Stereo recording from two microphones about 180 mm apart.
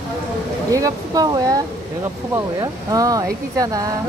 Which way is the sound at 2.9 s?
20° right (ahead or behind).